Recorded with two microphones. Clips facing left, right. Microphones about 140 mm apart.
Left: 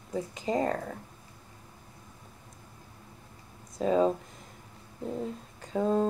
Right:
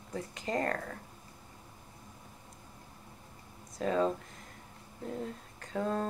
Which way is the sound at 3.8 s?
10° left (ahead or behind).